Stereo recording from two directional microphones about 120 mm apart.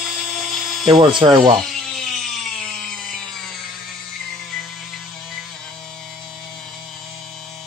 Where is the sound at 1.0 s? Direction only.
40° right (ahead or behind).